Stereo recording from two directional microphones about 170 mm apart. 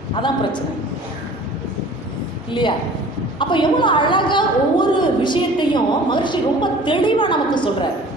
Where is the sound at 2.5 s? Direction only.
30° left (ahead or behind).